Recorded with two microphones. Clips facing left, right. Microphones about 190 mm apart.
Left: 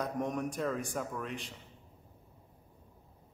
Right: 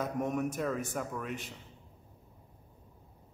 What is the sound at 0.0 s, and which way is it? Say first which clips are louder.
A man's voice: right 2 dB; 5° right (ahead or behind).